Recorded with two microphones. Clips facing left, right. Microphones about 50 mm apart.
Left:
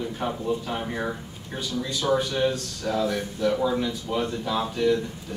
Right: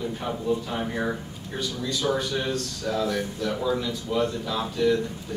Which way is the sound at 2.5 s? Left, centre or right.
Left.